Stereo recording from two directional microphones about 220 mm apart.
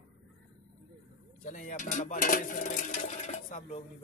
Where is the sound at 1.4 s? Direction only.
35° left (ahead or behind).